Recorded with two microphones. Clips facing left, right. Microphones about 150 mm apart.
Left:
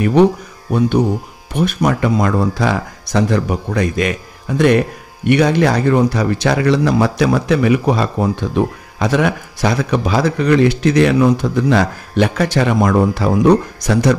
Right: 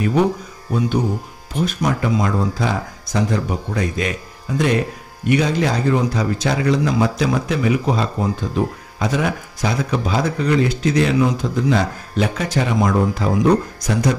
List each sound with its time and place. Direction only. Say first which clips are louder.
0.7 s speech: left 5 dB; 65° left (ahead or behind)